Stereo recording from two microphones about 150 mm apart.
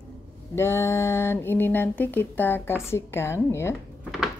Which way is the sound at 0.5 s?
15° left (ahead or behind).